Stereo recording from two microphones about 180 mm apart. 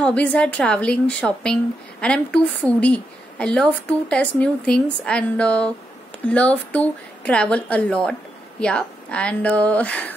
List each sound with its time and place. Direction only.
0.0 s a woman's voice: 5° left (ahead or behind)